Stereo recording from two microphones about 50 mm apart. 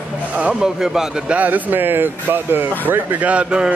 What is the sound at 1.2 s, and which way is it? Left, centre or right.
Speech, right.